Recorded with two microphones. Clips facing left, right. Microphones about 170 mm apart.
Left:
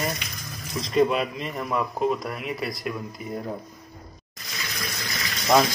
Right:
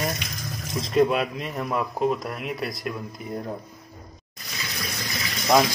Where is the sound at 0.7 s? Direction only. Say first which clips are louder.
Right 1 dB; centre (ahead or behind).